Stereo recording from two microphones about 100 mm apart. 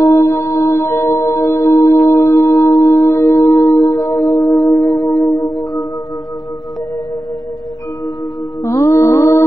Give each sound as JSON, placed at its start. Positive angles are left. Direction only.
{"t": 0.0, "sound": "music", "side_deg": 35}
{"t": 8.6, "sound": "music", "side_deg": 30}